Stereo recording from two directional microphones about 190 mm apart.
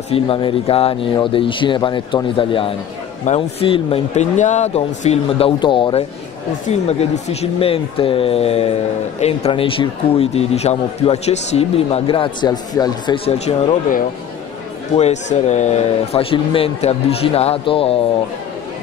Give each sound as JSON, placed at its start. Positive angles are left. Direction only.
{"t": 0.1, "sound": "a man's voice", "side_deg": 30}
{"t": 15.0, "sound": "a man's voice", "side_deg": 35}